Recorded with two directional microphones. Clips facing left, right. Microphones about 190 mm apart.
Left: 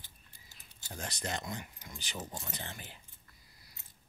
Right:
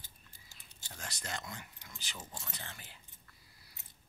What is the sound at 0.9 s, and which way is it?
Speech, 20° left (ahead or behind).